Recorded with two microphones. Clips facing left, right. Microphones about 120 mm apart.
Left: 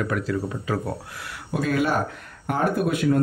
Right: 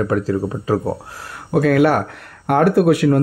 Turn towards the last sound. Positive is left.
turn(degrees=-70)  # may be behind; listen again after turning